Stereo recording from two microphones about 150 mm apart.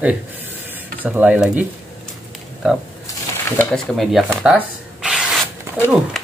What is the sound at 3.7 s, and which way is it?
Speech, centre (ahead or behind).